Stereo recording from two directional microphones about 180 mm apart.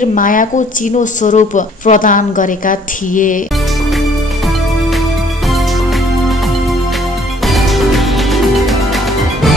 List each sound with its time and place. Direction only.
0.0 s a woman's voice: 45° left (ahead or behind)
7.4 s music: centre (ahead or behind)